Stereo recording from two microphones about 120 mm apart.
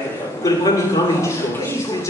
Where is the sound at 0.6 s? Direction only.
30° left (ahead or behind).